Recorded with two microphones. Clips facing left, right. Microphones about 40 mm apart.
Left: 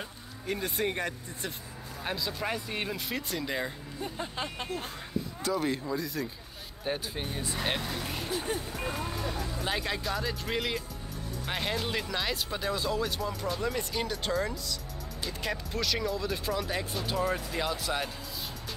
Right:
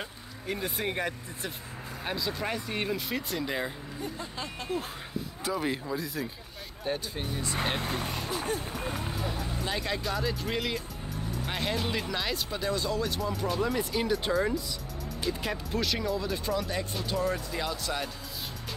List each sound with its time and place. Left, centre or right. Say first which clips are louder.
0.5 s speech: left 1 dB; centre
4.2 s speech: left 2 dB; left
5.4 s speech: even; centre
6.8 s speech: right 1 dB; centre
7.8 s speech: right 2 dB; right
9.7 s speech: even; centre